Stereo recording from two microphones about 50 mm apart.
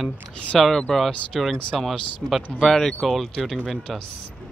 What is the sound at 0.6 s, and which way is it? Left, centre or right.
Speech, centre.